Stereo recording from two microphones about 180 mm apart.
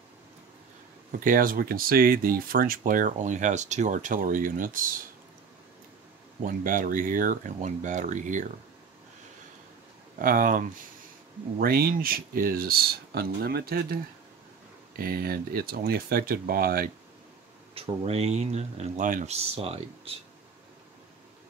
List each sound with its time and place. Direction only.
1.2 s speech: 50° right (ahead or behind)
6.4 s speech: 50° right (ahead or behind)
10.1 s speech: 50° right (ahead or behind)
15.0 s speech: 55° right (ahead or behind)
17.7 s speech: 35° right (ahead or behind)